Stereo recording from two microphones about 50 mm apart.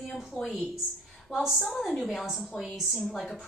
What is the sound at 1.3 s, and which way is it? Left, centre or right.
A woman's voice, centre.